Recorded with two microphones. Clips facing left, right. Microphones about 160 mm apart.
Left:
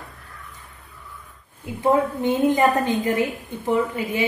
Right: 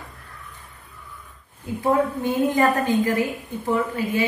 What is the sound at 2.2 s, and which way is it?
A woman's voice, 20° left (ahead or behind).